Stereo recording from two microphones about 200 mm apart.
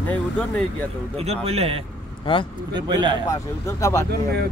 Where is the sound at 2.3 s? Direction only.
25° left (ahead or behind).